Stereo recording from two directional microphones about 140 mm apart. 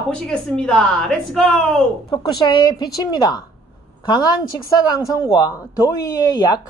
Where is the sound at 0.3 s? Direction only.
5° left (ahead or behind).